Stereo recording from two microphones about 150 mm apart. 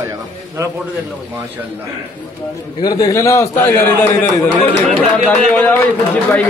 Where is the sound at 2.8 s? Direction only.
25° left (ahead or behind).